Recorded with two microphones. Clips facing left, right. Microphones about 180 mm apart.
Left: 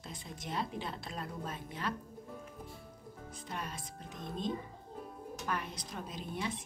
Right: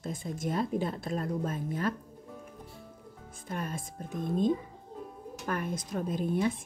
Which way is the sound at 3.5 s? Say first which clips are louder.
Right 7 dB; 50° right (ahead or behind).